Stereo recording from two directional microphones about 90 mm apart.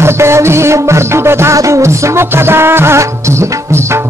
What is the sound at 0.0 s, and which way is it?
Music, 30° right (ahead or behind).